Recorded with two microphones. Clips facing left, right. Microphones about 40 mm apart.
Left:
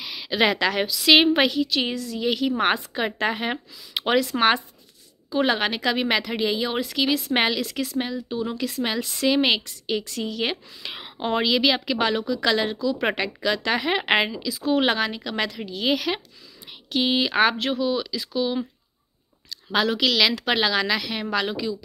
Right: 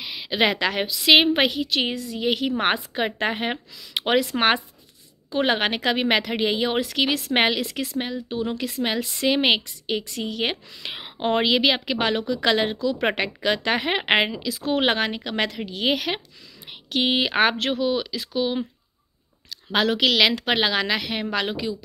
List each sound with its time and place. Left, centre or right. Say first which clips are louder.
0.0 s a woman's voice: even; right
14.5 s a woman's voice: left 1 dB; right
14.8 s a woman's voice: even; right